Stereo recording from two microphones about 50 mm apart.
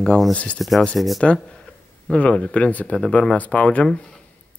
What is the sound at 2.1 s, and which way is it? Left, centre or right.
Speech, left.